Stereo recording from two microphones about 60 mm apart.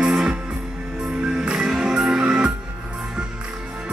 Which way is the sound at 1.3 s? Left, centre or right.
Centre.